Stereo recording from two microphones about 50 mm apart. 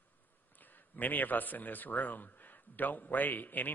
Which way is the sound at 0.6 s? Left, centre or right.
Left.